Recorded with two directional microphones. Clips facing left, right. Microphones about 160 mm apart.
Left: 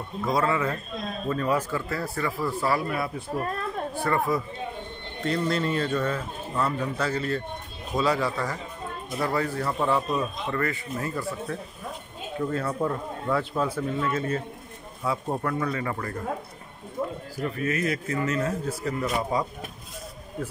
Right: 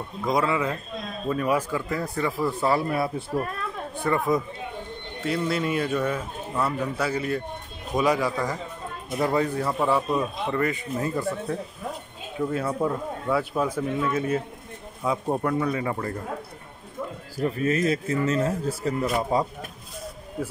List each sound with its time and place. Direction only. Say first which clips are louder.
0.3 s a man's voice: right 1 dB; 15° right (ahead or behind); by 3.4 s 30° right (ahead or behind)
3.9 s speech: right 3 dB; 20° right (ahead or behind)
5.2 s a man's voice: even; 5° right (ahead or behind)
17.4 s speech: right 4 dB; 30° right (ahead or behind)
20.4 s speech: right 2 dB; 10° right (ahead or behind)